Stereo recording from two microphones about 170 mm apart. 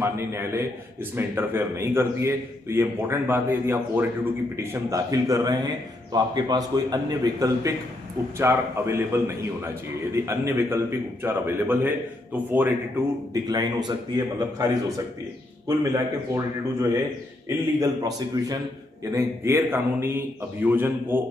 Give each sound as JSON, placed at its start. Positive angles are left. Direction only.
{"t": 0.0, "sound": "a man's voice", "side_deg": -15}
{"t": 13.3, "sound": "a man's voice", "side_deg": -25}
{"t": 19.1, "sound": "a man's voice", "side_deg": -15}